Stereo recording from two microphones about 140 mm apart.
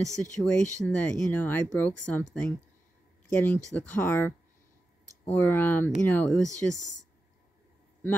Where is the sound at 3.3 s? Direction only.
10° left (ahead or behind).